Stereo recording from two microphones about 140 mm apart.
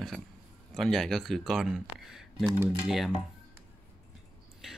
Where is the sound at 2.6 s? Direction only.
15° right (ahead or behind).